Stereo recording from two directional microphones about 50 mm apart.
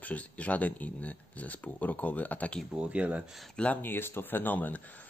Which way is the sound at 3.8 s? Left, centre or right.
Left.